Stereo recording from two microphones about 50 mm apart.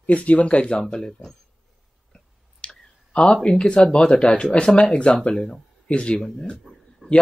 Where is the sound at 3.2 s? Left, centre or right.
Centre.